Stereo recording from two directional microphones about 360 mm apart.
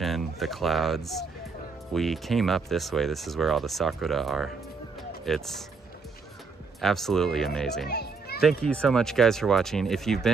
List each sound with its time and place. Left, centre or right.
0.0 s speech: centre
6.8 s speech: centre
7.9 s children playing: left
8.4 s speech: centre